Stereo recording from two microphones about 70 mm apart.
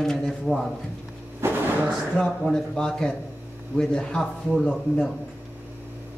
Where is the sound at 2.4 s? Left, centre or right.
Centre.